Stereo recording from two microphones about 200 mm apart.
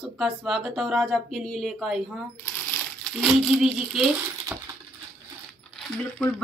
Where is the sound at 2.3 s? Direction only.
10° left (ahead or behind).